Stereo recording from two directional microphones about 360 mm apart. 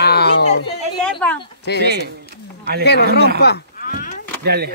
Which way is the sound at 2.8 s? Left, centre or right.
Left.